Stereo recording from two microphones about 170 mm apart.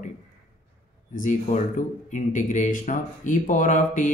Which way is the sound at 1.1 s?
45° left (ahead or behind).